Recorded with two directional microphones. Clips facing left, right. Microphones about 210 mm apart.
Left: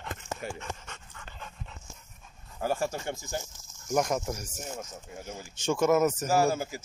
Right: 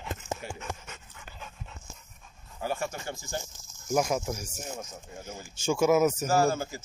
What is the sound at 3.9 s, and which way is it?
Speech, centre (ahead or behind).